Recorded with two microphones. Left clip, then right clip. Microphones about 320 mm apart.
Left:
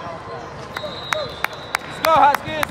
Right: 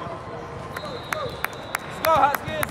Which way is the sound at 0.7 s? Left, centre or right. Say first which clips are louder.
Left 6 dB; centre.